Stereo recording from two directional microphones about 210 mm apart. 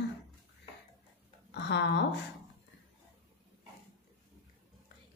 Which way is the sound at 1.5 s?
55° left (ahead or behind).